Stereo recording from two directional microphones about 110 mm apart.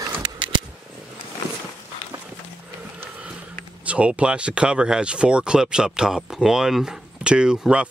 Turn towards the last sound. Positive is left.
turn(degrees=-10)  # may be behind; listen again after turning